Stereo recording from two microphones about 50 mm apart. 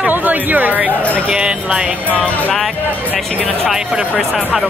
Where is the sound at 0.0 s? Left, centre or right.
Right.